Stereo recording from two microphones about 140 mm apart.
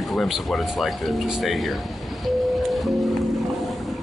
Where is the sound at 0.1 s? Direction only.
Centre (ahead or behind).